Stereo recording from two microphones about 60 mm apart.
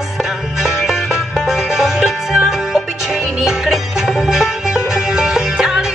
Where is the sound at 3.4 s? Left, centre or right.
Centre.